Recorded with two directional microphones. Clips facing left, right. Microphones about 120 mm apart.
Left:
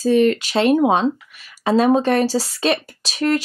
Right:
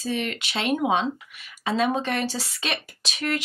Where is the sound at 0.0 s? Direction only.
40° left (ahead or behind).